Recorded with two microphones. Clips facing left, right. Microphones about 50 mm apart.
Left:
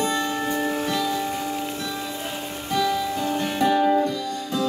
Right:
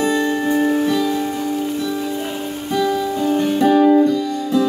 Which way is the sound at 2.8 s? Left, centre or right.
Centre.